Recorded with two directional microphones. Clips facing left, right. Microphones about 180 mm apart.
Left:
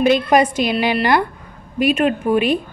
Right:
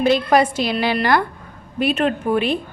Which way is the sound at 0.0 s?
20° left (ahead or behind).